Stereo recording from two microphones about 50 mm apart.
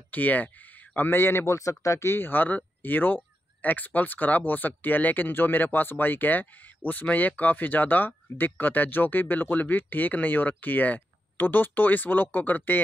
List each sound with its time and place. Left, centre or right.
0.1 s speech: left
0.9 s a man's voice: left
1.4 s speech: left
2.1 s speech: left